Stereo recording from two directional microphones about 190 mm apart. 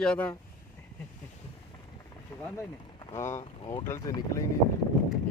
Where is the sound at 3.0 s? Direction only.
15° left (ahead or behind).